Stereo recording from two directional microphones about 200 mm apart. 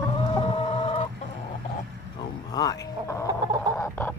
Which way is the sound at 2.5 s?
20° left (ahead or behind).